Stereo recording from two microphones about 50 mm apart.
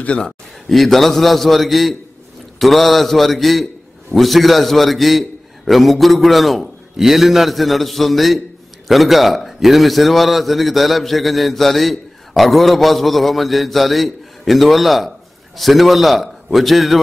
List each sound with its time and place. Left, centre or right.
0.0 s a man's voice: left
0.7 s a man's voice: centre